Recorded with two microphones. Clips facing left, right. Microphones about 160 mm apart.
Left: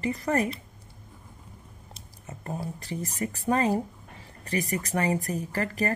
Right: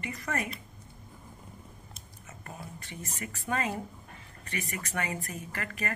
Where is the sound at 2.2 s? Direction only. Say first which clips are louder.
Left 10 dB; 35° left (ahead or behind).